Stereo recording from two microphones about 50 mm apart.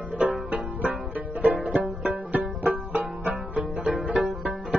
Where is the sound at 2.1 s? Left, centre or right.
Right.